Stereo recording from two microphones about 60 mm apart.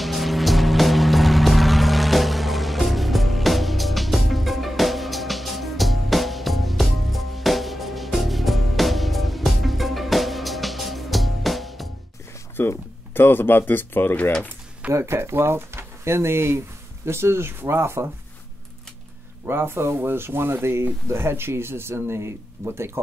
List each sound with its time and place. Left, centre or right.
0.0 s music: centre
12.5 s speech: left
14.9 s speech: right
19.4 s speech: right